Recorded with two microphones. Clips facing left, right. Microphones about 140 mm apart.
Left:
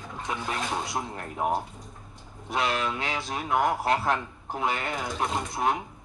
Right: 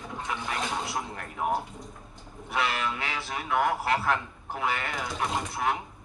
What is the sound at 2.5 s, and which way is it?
A man's voice, 35° left (ahead or behind).